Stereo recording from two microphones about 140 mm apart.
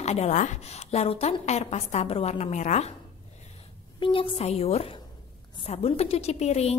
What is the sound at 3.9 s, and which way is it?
A woman's voice, 35° left (ahead or behind).